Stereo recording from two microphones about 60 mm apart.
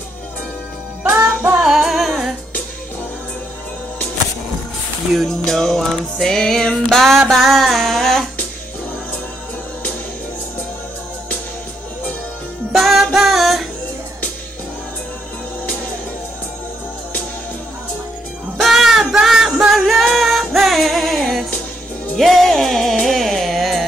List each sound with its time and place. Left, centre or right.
1.6 s music: centre
5.1 s music: centre
12.7 s music: centre
18.6 s music: centre